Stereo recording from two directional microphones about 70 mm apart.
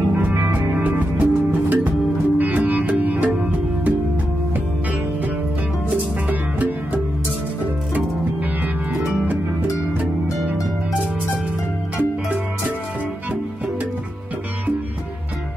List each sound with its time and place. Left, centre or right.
0.2 s music: right
12.0 s music: right